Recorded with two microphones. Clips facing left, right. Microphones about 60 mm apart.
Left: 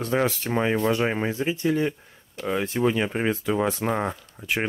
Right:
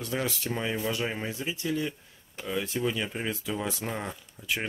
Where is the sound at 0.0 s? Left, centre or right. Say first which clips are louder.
Left 8 dB; left.